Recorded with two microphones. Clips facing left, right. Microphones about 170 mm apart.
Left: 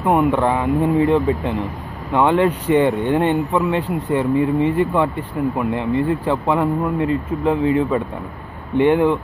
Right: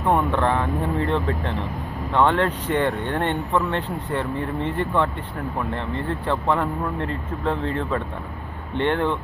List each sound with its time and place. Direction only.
0.0 s speech: 20° left (ahead or behind)